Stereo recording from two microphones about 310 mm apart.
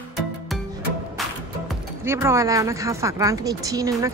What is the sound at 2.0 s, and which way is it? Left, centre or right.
Speech, centre.